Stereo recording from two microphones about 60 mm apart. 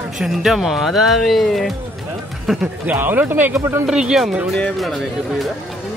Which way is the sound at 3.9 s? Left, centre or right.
Centre.